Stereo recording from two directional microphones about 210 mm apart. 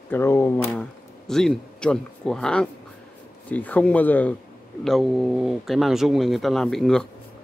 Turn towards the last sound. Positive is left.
turn(degrees=0)  # may be behind; listen again after turning